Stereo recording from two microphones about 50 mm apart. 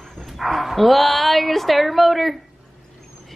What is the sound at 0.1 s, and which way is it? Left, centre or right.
A woman's voice, centre.